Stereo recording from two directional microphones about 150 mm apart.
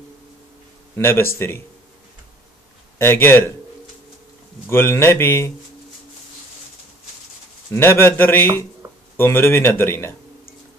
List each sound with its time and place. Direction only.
0.9 s speech: 15° left (ahead or behind)
3.0 s speech: 15° left (ahead or behind)
4.6 s speech: 15° left (ahead or behind)
7.7 s speech: 15° left (ahead or behind)